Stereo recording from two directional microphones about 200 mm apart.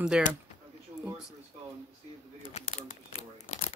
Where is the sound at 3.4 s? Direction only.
35° left (ahead or behind).